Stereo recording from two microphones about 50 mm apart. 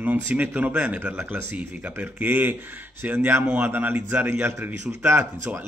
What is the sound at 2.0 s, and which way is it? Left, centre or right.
Speech, right.